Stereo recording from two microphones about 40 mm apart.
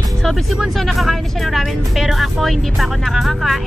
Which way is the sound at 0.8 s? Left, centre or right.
Centre.